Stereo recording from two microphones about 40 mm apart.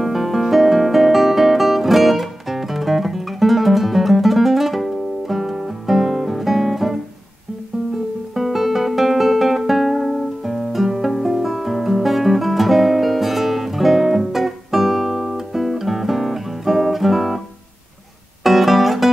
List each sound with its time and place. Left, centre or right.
0.0 s guitar: centre
8.4 s music: centre
18.4 s music: centre